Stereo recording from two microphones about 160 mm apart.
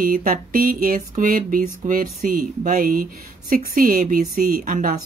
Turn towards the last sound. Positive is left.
turn(degrees=-55)  # may be behind; listen again after turning